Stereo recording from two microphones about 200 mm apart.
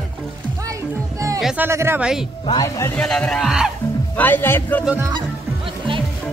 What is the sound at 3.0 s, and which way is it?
Speech, 5° left (ahead or behind).